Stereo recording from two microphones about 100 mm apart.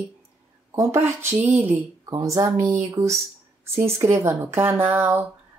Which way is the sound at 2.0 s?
35° right (ahead or behind).